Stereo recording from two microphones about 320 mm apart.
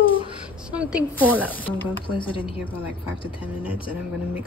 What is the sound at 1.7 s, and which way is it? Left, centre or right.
Speech, centre.